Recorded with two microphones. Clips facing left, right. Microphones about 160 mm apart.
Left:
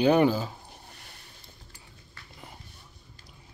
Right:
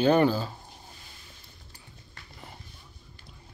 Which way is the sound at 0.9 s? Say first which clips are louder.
Left 1 dB; 65° left (ahead or behind).